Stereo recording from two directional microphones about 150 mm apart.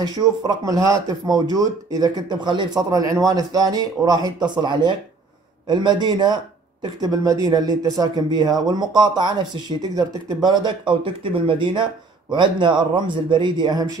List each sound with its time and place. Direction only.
0.5 s speech: 25° right (ahead or behind)